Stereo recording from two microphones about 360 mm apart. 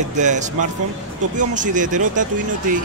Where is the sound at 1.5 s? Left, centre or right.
Right.